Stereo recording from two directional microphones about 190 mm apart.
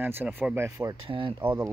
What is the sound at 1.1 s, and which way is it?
Speech, 30° right (ahead or behind).